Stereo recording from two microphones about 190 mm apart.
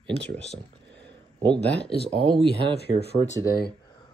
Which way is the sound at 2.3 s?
25° right (ahead or behind).